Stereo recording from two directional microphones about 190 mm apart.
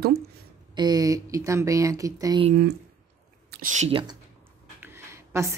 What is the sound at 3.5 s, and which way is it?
Speech, 45° right (ahead or behind).